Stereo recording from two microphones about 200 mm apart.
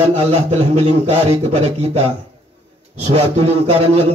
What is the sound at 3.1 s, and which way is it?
Speech, 30° right (ahead or behind).